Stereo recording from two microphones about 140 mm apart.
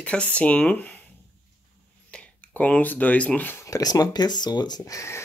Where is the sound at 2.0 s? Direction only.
10° left (ahead or behind).